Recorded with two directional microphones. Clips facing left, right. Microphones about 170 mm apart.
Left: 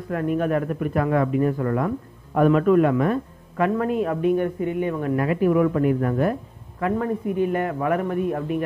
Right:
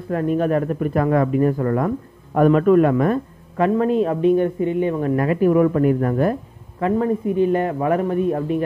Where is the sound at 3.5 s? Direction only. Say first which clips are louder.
Right 4 dB; 30° right (ahead or behind).